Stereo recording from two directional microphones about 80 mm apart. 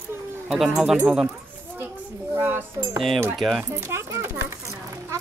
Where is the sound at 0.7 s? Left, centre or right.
Centre.